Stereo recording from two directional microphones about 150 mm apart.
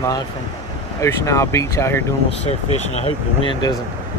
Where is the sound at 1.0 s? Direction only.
20° left (ahead or behind).